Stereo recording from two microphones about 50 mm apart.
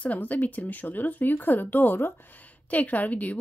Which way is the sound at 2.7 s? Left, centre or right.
Left.